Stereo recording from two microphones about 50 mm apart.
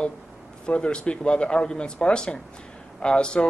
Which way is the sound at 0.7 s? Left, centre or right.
Left.